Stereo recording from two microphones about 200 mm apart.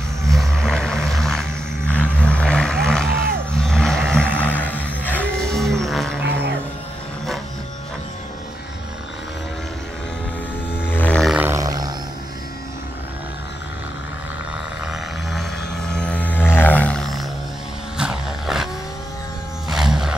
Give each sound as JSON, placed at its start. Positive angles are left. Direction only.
{"t": 0.2, "sound": "vehicle", "side_deg": 0}
{"t": 3.1, "sound": "vehicle", "side_deg": -50}
{"t": 3.5, "sound": "a sound", "side_deg": 0}
{"t": 10.8, "sound": "music", "side_deg": 10}
{"t": 11.4, "sound": "a sound", "side_deg": -15}
{"t": 15.9, "sound": "music", "side_deg": 5}
{"t": 17.9, "sound": "vehicle", "side_deg": -5}
{"t": 19.7, "sound": "music", "side_deg": 0}